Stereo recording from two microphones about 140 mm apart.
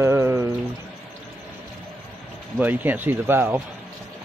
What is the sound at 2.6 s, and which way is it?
Speech, 15° right (ahead or behind).